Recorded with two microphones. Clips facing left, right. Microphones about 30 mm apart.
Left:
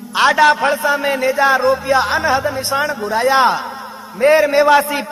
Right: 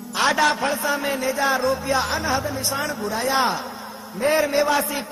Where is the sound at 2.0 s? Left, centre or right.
Left.